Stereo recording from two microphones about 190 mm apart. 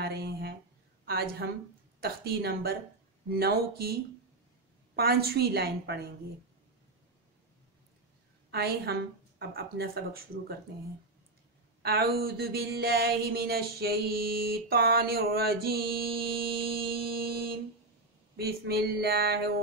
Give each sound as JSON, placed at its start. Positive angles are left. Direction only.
{"t": 0.0, "sound": "a sound", "side_deg": -55}
{"t": 1.0, "sound": "a woman's voice", "side_deg": -55}
{"t": 2.0, "sound": "mantra", "side_deg": -55}
{"t": 8.5, "sound": "a woman's voice", "side_deg": -55}
{"t": 9.4, "sound": "mantra", "side_deg": -55}
{"t": 11.8, "sound": "mantra", "side_deg": -55}